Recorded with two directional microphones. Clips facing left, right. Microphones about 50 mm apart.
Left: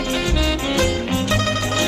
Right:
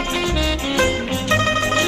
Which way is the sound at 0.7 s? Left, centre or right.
Right.